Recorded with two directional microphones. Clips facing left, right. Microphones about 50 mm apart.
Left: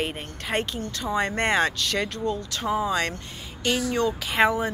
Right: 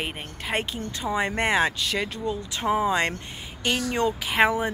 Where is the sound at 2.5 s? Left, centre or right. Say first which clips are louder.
Right 4 dB; right.